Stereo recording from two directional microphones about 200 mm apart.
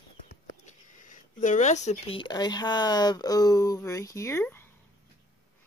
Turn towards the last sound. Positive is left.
turn(degrees=10)  # may be behind; listen again after turning